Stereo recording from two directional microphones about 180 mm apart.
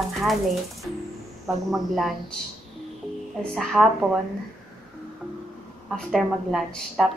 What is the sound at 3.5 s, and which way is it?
Speech, centre (ahead or behind).